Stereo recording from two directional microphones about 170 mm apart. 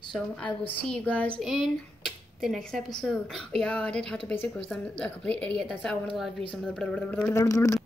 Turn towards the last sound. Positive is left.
turn(degrees=20)  # may be behind; listen again after turning